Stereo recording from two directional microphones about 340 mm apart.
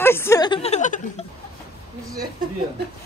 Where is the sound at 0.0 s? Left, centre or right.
Centre.